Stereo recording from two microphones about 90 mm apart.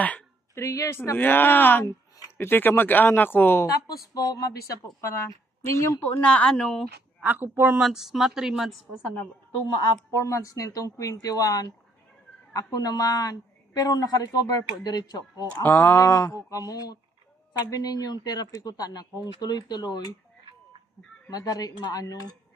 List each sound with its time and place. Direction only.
0.6 s speech: 35° left (ahead or behind)
1.1 s speech: 20° left (ahead or behind)
3.8 s speech: 45° left (ahead or behind)
6.2 s speech: 15° left (ahead or behind)
7.2 s speech: 20° right (ahead or behind)
7.8 s speech: 5° right (ahead or behind)
10.1 s speech: 35° left (ahead or behind)
12.7 s speech: 45° left (ahead or behind)
15.6 s speech: 25° left (ahead or behind)
15.9 s speech: 40° left (ahead or behind)
21.3 s speech: 45° left (ahead or behind)